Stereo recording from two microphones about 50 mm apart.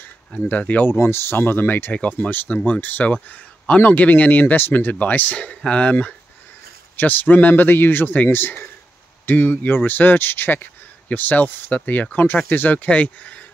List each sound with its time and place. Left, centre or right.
0.5 s speech: left
0.8 s speech: left
7.0 s speech: left